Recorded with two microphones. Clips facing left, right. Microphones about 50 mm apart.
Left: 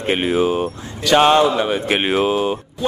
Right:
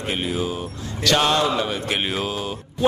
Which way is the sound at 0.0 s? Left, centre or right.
Left.